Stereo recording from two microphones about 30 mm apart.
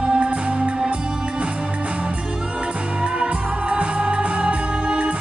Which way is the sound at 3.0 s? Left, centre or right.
Right.